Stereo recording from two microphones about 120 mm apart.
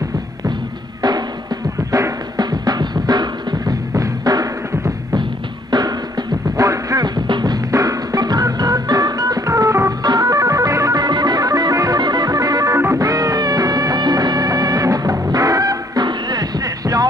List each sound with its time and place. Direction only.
1.0 s drum: 35° right (ahead or behind)
5.7 s music: 35° right (ahead or behind)
7.2 s drum: 40° right (ahead or behind)
7.7 s music: 30° right (ahead or behind)